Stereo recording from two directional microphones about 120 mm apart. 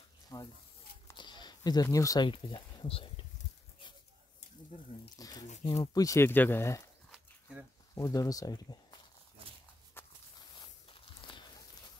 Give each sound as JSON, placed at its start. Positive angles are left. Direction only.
{"t": 0.3, "sound": "speech", "side_deg": 30}
{"t": 1.1, "sound": "a sound", "side_deg": 40}
{"t": 2.2, "sound": "speech", "side_deg": 45}
{"t": 5.1, "sound": "speech", "side_deg": 30}
{"t": 7.1, "sound": "a sound", "side_deg": -5}
{"t": 7.9, "sound": "speech", "side_deg": 30}
{"t": 10.0, "sound": "walk", "side_deg": 20}
{"t": 10.9, "sound": "walk", "side_deg": 45}